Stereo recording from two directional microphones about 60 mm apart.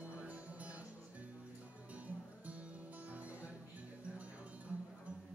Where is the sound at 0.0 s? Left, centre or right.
Right.